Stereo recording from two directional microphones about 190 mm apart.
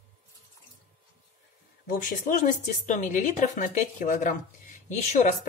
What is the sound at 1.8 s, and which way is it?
Speech, 45° left (ahead or behind).